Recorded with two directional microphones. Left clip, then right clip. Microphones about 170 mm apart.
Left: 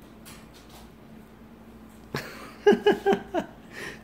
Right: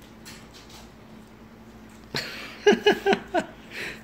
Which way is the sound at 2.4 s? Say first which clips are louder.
Even; 5° left (ahead or behind).